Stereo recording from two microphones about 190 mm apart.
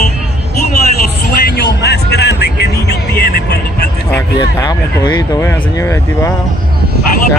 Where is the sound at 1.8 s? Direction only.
60° left (ahead or behind).